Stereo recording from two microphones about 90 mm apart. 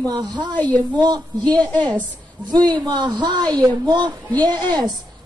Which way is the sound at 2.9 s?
55° right (ahead or behind).